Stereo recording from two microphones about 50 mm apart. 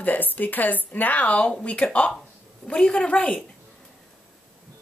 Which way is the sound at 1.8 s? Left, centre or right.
Centre.